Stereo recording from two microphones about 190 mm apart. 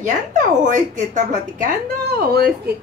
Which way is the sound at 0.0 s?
40° right (ahead or behind).